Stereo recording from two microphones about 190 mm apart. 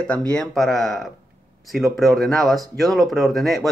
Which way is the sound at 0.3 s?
5° left (ahead or behind).